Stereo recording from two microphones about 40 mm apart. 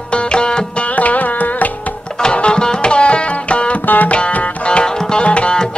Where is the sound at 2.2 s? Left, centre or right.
Left.